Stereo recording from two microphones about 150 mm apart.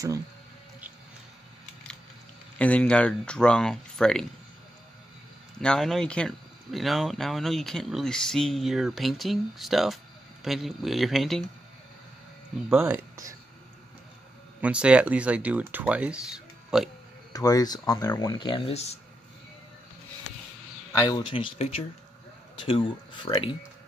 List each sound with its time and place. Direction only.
2.6 s speech: 10° left (ahead or behind)
5.6 s speech: 5° left (ahead or behind)
12.6 s speech: 10° right (ahead or behind)
14.6 s speech: 10° right (ahead or behind)
17.3 s speech: 25° left (ahead or behind); by 18.9 s 45° left (ahead or behind)
20.9 s speech: 25° left (ahead or behind)
21.3 s speech: 40° left (ahead or behind)
22.7 s speech: 30° left (ahead or behind)